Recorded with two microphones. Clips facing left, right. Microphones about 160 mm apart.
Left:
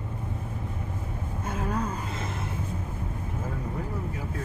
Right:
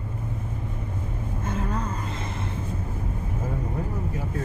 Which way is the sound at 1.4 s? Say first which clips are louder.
Even; 10° left (ahead or behind).